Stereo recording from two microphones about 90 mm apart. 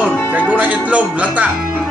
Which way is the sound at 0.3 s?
20° right (ahead or behind).